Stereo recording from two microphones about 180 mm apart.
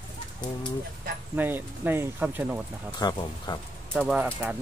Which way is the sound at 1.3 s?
10° right (ahead or behind).